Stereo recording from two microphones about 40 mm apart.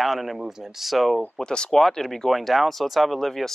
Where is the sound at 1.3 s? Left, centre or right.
Left.